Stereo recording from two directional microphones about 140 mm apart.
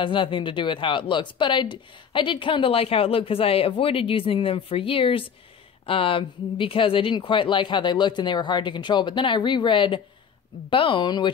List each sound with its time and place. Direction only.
0.0 s speech: 35° left (ahead or behind)